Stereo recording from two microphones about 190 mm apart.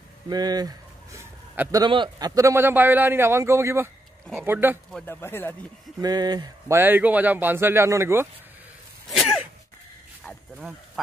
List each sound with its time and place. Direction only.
0.3 s a man's voice: 20° right (ahead or behind)
1.8 s a man's voice: 25° right (ahead or behind)
4.9 s speech: 10° left (ahead or behind)
5.9 s speech: 20° right (ahead or behind)
6.8 s a man's voice: 10° right (ahead or behind)
9.1 s sneeze: centre (ahead or behind)